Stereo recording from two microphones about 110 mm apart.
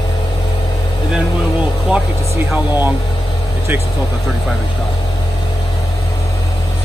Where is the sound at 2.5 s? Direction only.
15° right (ahead or behind).